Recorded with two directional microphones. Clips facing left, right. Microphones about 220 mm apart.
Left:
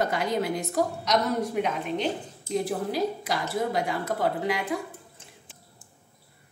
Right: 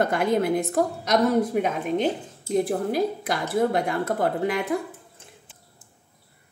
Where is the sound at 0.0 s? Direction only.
55° right (ahead or behind).